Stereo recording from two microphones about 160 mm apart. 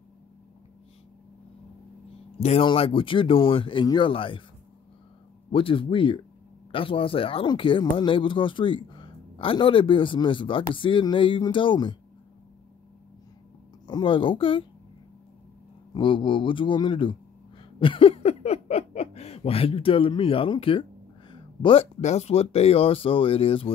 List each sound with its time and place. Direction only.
2.4 s speech: 35° left (ahead or behind)
5.5 s speech: 35° left (ahead or behind)
13.8 s speech: 30° left (ahead or behind)
15.9 s speech: 30° left (ahead or behind)
21.3 s a sound: 30° left (ahead or behind)
22.0 s speech: 40° left (ahead or behind)